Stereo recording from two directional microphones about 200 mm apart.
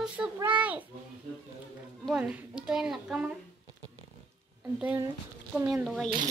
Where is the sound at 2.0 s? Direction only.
5° right (ahead or behind).